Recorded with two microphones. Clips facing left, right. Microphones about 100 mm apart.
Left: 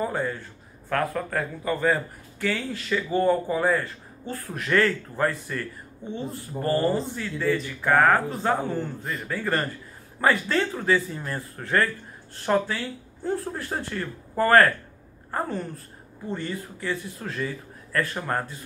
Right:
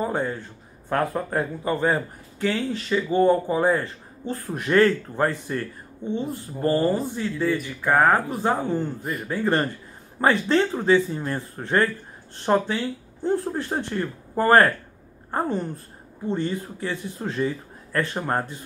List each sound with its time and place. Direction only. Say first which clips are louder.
0.0 s speech: right 2 dB; 20° right (ahead or behind)